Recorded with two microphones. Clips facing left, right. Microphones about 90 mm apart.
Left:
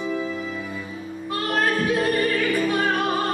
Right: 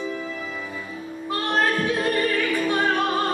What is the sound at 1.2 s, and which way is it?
Music, 25° right (ahead or behind).